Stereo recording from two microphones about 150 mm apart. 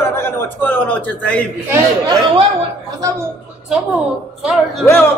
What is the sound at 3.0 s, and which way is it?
Speech, 20° right (ahead or behind).